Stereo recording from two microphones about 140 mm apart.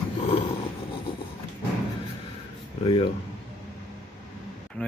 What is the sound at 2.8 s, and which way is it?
Speech, 45° left (ahead or behind).